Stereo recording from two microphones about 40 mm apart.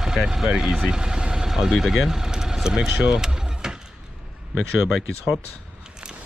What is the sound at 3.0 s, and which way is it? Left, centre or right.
Vehicle, centre.